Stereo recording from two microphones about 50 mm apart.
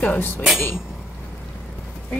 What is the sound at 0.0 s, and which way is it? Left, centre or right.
Speech, left.